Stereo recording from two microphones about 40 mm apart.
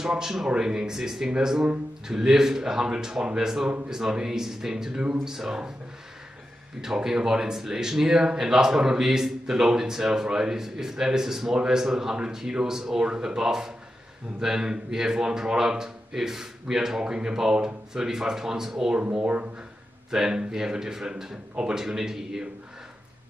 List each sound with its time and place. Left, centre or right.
0.0 s speech: centre
6.8 s speech: centre
19.2 s speech: right
20.1 s speech: centre